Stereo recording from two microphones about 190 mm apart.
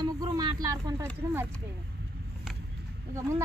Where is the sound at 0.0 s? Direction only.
20° right (ahead or behind).